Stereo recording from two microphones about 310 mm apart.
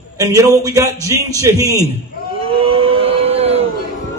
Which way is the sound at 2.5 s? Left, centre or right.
Centre.